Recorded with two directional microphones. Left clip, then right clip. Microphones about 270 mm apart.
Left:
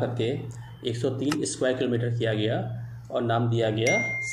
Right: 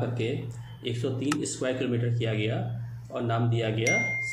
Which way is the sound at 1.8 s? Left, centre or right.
Centre.